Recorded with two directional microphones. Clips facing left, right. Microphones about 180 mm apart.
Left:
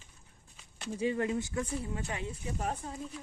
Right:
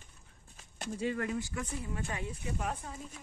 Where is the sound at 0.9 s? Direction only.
20° left (ahead or behind).